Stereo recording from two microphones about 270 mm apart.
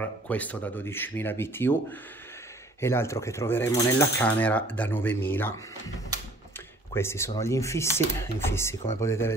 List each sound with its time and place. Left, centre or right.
0.0 s speech: centre
6.9 s speech: centre